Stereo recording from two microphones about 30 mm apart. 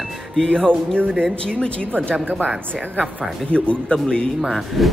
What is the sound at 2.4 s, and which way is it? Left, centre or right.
Speech, right.